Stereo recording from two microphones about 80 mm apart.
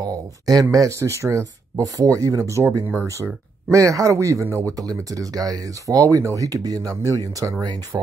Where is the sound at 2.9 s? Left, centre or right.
Right.